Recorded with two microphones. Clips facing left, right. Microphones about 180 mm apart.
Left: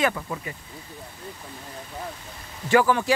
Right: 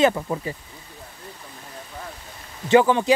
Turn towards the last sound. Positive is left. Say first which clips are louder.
# right 3 dB
turn(degrees=-20)  # may be behind; listen again after turning